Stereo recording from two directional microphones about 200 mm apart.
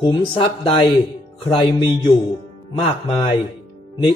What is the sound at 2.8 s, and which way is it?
Speech, 25° left (ahead or behind).